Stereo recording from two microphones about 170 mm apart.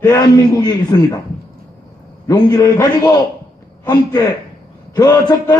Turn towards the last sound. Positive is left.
turn(degrees=25)  # may be behind; listen again after turning